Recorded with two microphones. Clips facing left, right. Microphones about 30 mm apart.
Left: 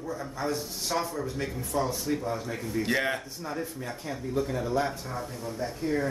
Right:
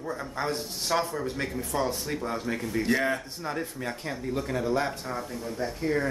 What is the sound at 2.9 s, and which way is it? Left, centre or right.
Speech, centre.